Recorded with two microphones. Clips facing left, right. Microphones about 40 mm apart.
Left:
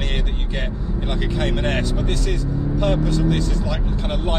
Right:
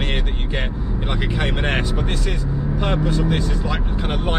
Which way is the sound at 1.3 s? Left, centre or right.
Centre.